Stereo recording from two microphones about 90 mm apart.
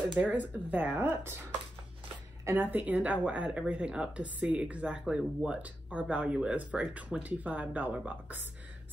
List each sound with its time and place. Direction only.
0.2 s speech: 20° right (ahead or behind)
2.4 s a woman's voice: 20° right (ahead or behind)